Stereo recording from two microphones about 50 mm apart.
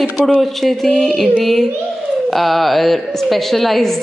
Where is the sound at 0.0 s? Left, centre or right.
Centre.